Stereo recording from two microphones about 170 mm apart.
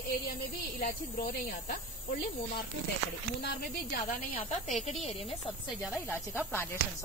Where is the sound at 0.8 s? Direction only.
55° left (ahead or behind).